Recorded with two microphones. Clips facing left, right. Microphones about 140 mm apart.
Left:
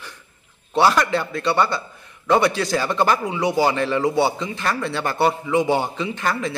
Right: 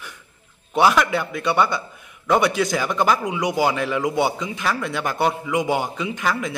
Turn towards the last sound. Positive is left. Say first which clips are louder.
# even
turn(degrees=-5)  # may be behind; listen again after turning